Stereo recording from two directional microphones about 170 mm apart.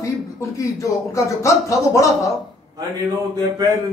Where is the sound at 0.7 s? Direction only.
20° left (ahead or behind).